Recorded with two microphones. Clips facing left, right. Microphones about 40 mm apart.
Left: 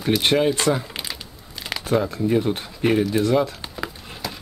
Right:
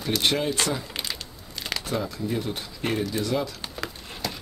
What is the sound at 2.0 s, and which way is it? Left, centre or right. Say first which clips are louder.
Speech: left 8 dB; left.